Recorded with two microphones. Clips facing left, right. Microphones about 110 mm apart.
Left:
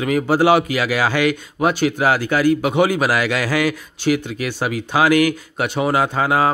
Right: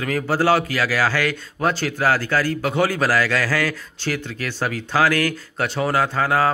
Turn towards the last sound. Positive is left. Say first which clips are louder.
# left 2 dB
turn(degrees=15)  # may be behind; listen again after turning